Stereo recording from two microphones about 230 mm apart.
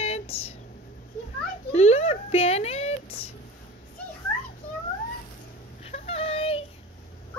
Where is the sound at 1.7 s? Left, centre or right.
Left.